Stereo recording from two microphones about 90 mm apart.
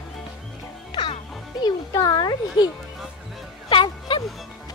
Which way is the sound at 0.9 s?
65° left (ahead or behind).